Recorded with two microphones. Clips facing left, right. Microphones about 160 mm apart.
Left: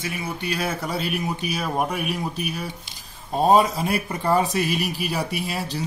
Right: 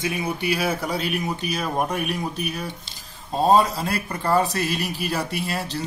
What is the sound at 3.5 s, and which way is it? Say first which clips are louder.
Speech: left 1 dB; 15° left (ahead or behind).